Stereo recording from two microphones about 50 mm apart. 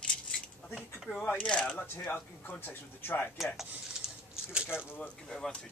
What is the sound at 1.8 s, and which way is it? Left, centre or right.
Speech, left.